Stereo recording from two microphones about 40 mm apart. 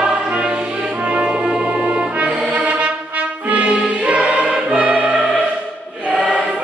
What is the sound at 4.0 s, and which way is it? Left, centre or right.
Choir, right.